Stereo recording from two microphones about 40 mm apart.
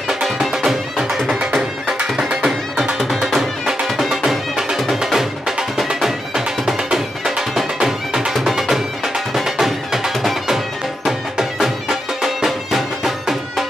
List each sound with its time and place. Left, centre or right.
0.1 s music: centre
3.6 s music: centre
8.3 s music: centre